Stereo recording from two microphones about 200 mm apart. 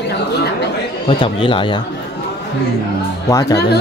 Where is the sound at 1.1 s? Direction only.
25° left (ahead or behind).